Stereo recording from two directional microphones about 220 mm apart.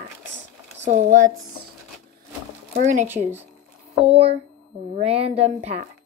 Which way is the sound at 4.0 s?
25° right (ahead or behind).